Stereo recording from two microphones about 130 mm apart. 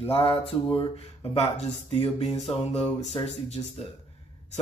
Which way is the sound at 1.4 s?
55° left (ahead or behind).